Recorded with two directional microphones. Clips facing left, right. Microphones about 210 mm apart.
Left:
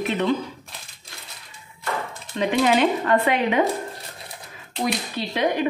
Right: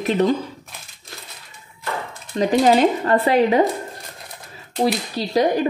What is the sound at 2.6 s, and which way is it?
Speech, 35° right (ahead or behind).